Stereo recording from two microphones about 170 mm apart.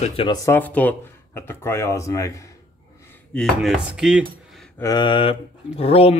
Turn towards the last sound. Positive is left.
turn(degrees=35)  # may be behind; listen again after turning